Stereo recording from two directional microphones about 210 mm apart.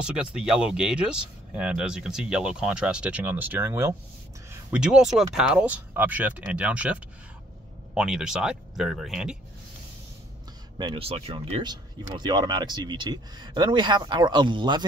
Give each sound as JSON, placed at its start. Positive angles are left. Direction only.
{"t": 0.0, "sound": "speech", "side_deg": -5}
{"t": 10.8, "sound": "speech", "side_deg": -25}